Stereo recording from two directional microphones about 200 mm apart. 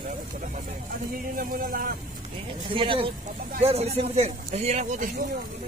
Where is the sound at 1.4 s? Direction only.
45° right (ahead or behind).